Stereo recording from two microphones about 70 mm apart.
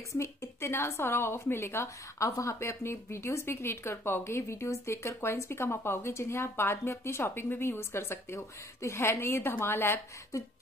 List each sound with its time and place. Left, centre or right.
0.1 s a woman's voice: left